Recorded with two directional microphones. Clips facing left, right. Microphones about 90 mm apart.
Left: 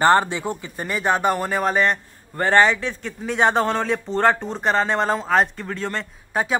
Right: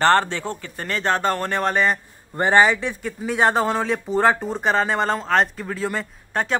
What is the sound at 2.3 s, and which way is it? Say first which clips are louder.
Speech: even; 15° right (ahead or behind).